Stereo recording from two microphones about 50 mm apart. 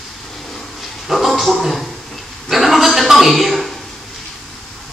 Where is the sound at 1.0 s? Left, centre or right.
Centre.